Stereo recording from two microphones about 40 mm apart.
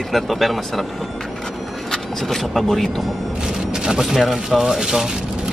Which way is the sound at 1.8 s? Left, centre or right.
Centre.